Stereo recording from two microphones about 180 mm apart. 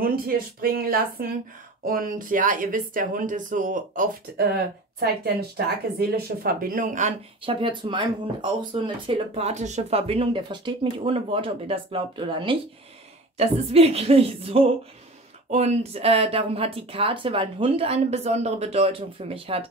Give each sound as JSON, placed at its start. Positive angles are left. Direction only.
{"t": 0.0, "sound": "speech", "side_deg": -55}
{"t": 5.0, "sound": "speech", "side_deg": -60}
{"t": 7.4, "sound": "speech", "side_deg": -25}
{"t": 9.1, "sound": "speech", "side_deg": -40}